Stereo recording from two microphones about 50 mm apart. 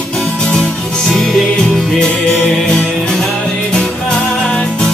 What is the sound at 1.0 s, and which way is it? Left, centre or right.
Music, centre.